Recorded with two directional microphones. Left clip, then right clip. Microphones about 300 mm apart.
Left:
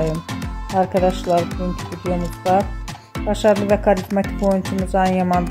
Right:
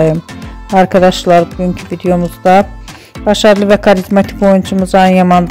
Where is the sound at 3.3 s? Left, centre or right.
Right.